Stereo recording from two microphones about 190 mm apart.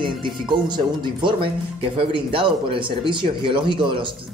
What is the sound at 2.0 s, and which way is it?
Speech, 30° right (ahead or behind).